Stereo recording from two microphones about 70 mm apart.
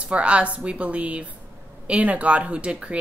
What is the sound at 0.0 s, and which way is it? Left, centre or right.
A woman's voice, centre.